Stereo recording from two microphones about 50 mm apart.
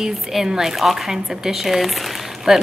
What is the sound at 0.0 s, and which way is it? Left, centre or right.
A woman's voice, centre.